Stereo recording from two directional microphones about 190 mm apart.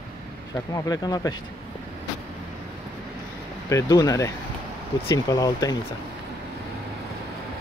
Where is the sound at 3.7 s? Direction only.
20° left (ahead or behind).